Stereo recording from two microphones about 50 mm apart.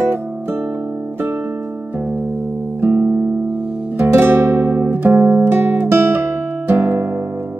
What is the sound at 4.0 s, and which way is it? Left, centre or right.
Music, right.